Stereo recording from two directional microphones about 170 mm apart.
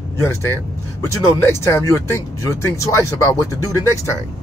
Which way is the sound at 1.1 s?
15° left (ahead or behind).